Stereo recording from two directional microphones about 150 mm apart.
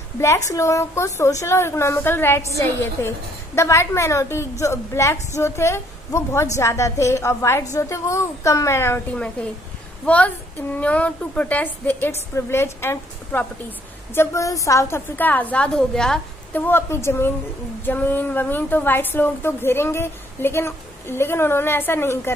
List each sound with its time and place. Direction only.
0.2 s a woman's voice: 20° left (ahead or behind)
3.5 s a woman's voice: 20° left (ahead or behind)
16.6 s a woman's voice: 15° left (ahead or behind)